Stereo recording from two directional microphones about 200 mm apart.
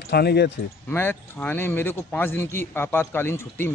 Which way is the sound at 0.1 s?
50° left (ahead or behind).